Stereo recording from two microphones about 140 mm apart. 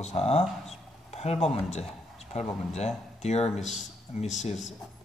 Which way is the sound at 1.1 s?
50° left (ahead or behind).